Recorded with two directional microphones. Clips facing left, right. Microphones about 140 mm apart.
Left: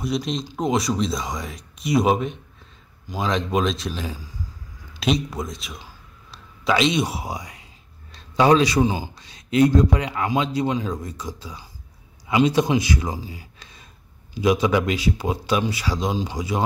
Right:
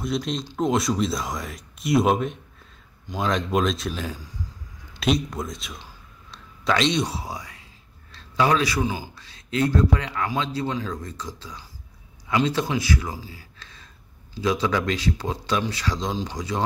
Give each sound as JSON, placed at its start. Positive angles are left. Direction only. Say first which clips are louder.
{"t": 0.0, "sound": "a man's voice", "louder": "left 2 dB", "side_deg": 0}